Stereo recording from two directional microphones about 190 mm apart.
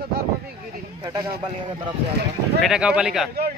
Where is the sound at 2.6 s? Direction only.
5° right (ahead or behind).